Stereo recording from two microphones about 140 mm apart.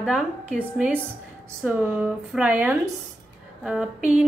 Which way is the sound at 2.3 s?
10° right (ahead or behind).